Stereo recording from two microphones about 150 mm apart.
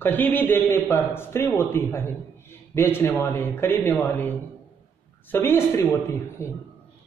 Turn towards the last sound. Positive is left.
turn(degrees=15)  # may be behind; listen again after turning